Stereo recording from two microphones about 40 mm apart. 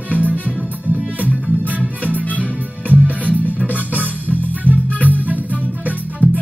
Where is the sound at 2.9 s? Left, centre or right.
Right.